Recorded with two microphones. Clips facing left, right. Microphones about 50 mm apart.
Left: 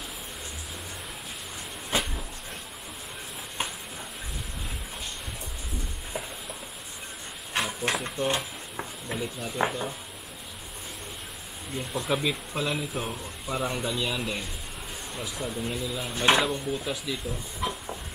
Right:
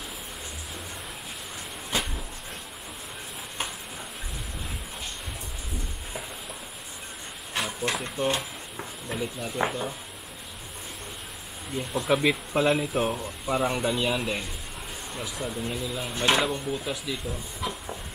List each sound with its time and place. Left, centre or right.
1.9 s train: left
7.9 s speech: centre
11.7 s speech: centre
12.2 s speech: right; by 17.2 s centre
17.6 s a sound: centre